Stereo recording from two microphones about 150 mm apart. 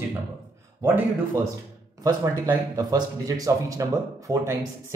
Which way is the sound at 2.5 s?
25° right (ahead or behind).